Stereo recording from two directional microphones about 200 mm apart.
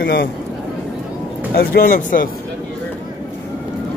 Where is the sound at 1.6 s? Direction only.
45° left (ahead or behind).